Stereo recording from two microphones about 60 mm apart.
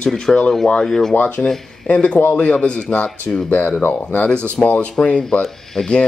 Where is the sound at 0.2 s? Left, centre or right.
Centre.